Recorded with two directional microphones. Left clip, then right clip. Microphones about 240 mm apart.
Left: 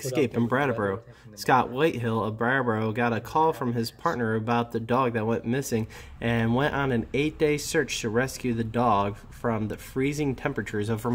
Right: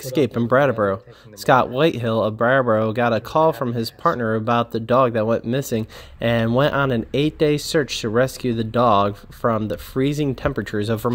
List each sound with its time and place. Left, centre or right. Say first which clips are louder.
0.0 s speech: right 5 dB; right